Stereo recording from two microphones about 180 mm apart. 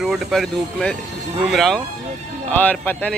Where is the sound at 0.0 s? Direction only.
Centre (ahead or behind).